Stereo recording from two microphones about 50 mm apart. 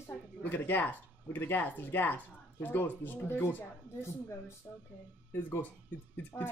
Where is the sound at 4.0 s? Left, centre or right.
Left.